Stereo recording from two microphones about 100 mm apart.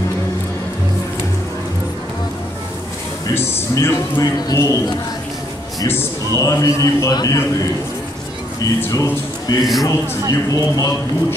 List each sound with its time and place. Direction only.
3.3 s a man's voice: 25° left (ahead or behind)
4.2 s a man's voice: 35° left (ahead or behind)
6.3 s a man's voice: 35° left (ahead or behind)
8.5 s a man's voice: 35° left (ahead or behind)